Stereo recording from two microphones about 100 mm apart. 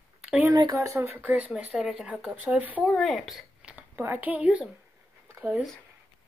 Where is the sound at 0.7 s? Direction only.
30° right (ahead or behind).